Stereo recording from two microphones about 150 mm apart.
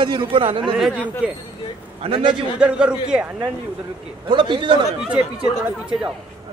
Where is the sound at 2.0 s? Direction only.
35° right (ahead or behind).